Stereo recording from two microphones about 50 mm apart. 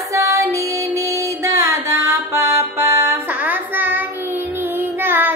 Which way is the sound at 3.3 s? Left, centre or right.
Right.